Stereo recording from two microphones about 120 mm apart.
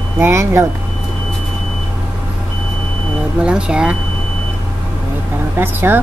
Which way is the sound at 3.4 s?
10° right (ahead or behind).